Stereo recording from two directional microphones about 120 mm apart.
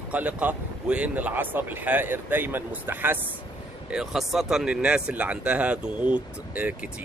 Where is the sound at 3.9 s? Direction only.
5° right (ahead or behind).